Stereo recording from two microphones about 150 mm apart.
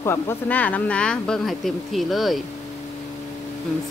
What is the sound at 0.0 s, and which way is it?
Speech, 15° left (ahead or behind).